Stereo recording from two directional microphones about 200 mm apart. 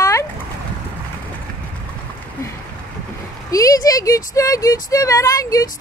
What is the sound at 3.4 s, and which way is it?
Speech, 15° left (ahead or behind).